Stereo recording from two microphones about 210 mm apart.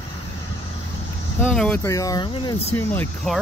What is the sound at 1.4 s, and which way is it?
Speech, 5° left (ahead or behind).